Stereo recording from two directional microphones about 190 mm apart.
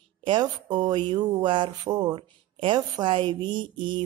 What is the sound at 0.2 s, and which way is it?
Speech, 25° right (ahead or behind).